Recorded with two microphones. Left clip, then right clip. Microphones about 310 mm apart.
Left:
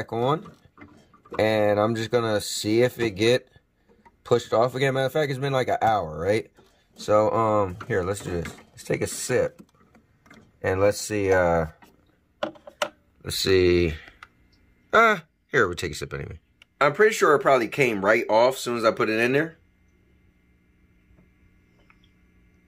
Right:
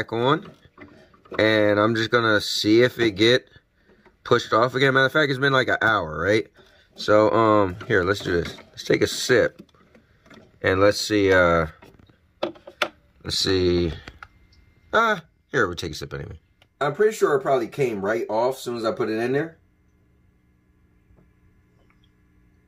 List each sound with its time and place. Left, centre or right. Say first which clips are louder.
0.1 s speech: right 2 dB; centre
10.8 s speech: right 4 dB; centre
13.2 s speech: left 1 dB; centre
18.8 s speech: left 5 dB; centre